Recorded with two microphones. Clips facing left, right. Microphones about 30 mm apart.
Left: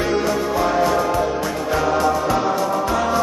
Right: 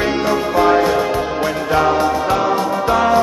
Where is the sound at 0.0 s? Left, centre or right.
Right.